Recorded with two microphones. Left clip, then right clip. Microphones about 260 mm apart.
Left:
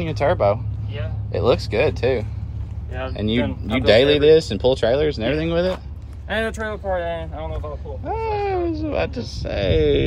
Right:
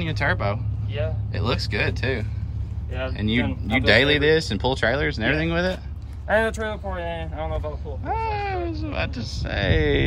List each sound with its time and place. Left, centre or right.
0.0 s speech: centre
7.0 s speech: right
8.0 s speech: centre